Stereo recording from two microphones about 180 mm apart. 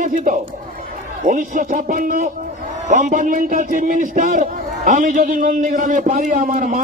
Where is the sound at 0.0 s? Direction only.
45° right (ahead or behind).